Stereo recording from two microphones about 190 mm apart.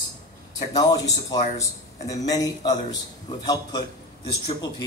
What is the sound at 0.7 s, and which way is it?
Speech, 20° left (ahead or behind).